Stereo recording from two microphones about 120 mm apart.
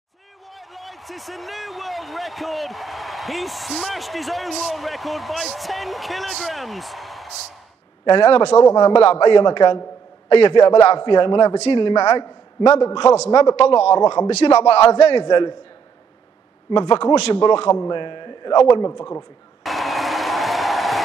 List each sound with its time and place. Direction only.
0.7 s speech: centre (ahead or behind)
8.0 s a man's voice: 40° left (ahead or behind)
10.5 s a man's voice: 30° left (ahead or behind)
14.3 s speech: 60° left (ahead or behind)
15.0 s a man's voice: 40° left (ahead or behind)
16.7 s speech: 50° left (ahead or behind)
17.4 s a man's voice: 40° left (ahead or behind)
19.6 s a sound: centre (ahead or behind)